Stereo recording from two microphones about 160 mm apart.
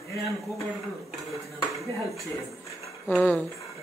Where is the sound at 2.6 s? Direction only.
10° left (ahead or behind).